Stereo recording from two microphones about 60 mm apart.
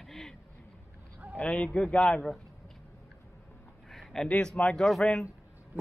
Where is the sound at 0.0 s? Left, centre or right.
Centre.